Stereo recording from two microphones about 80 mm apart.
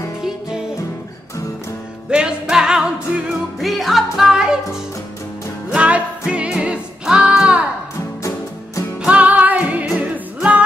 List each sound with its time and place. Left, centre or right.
2.0 s music: centre
3.5 s music: centre
5.8 s music: centre
9.0 s music: centre